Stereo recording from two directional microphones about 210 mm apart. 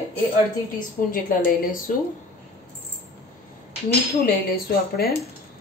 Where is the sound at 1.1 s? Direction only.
40° left (ahead or behind).